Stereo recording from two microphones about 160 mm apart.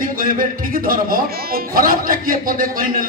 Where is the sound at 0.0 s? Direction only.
60° right (ahead or behind).